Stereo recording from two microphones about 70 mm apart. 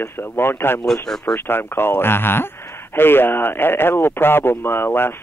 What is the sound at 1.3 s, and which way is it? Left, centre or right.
Speech, left.